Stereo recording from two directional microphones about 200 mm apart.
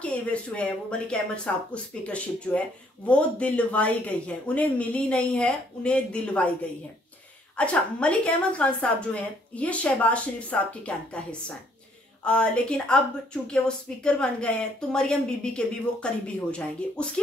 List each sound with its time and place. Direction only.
0.0 s a woman's voice: 5° left (ahead or behind)
7.5 s a woman's voice: 5° left (ahead or behind)
12.3 s speech: 5° left (ahead or behind)